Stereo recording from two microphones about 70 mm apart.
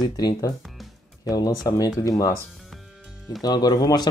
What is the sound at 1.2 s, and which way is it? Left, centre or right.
Speech, left.